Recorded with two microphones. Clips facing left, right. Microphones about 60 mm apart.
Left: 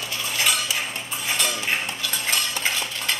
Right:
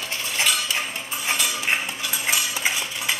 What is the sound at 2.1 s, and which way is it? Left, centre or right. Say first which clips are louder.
Stir: right 1 dB; centre.